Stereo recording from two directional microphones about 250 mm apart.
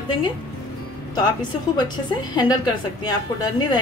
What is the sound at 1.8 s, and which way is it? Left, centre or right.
A woman's voice, centre.